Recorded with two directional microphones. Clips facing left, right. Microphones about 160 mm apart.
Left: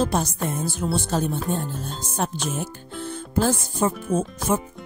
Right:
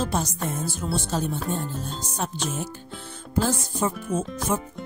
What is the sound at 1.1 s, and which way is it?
Speech, 55° left (ahead or behind).